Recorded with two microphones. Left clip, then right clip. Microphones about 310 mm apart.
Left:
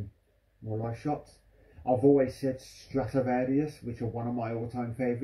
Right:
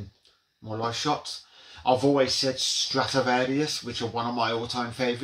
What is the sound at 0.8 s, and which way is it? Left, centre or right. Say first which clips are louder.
Speech: right 7 dB; right.